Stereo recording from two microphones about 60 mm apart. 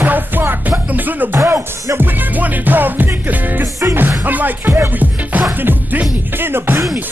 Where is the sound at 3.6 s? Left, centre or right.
Right.